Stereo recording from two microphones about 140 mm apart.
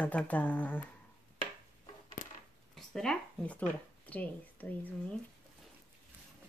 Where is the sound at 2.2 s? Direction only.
65° left (ahead or behind).